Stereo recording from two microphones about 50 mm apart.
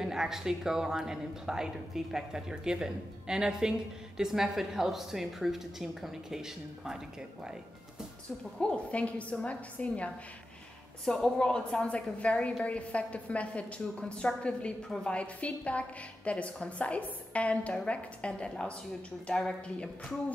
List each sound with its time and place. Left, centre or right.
0.0 s speech: centre
8.5 s a woman's voice: left
11.1 s a woman's voice: centre